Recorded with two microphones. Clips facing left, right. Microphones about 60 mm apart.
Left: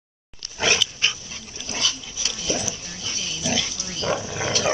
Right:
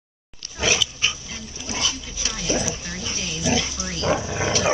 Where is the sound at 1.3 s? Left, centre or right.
Centre.